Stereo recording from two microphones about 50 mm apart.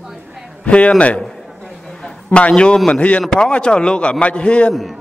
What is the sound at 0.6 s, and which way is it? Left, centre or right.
Speech, left.